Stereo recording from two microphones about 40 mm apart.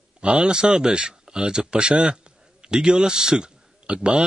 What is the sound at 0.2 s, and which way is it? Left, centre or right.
A man's voice, right.